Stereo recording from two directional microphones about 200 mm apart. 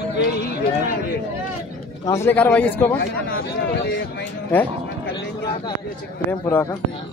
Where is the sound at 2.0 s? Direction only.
15° left (ahead or behind).